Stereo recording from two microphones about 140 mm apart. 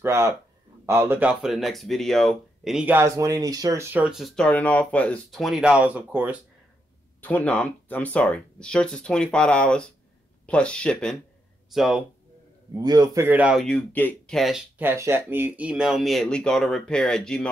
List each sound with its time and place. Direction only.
0.0 s speech: 20° right (ahead or behind)
1.4 s speech: centre (ahead or behind)
4.5 s speech: 10° left (ahead or behind); by 6.3 s 10° right (ahead or behind)
7.2 s speech: 10° left (ahead or behind)
12.7 s speech: 30° right (ahead or behind); by 13.6 s 10° right (ahead or behind)
13.6 s speech: 5° left (ahead or behind)
14.8 s speech: 15° right (ahead or behind); by 17.5 s 5° left (ahead or behind)